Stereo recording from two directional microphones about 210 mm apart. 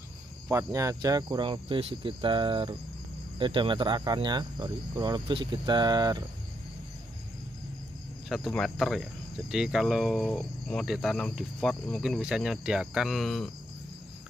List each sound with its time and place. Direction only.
0.5 s cricket: 15° right (ahead or behind)
8.3 s speech: centre (ahead or behind)